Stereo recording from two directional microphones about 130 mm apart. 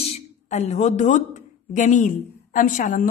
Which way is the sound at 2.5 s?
90° left.